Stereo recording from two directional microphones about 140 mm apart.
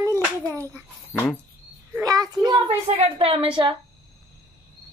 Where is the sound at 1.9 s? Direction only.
25° right (ahead or behind).